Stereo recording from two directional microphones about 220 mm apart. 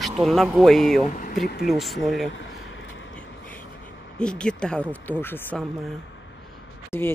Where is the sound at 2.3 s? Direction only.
55° left (ahead or behind).